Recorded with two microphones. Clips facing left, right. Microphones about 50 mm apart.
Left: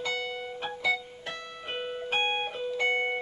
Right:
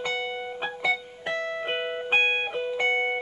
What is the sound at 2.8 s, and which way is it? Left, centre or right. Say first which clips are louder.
Music: right 2 dB; centre.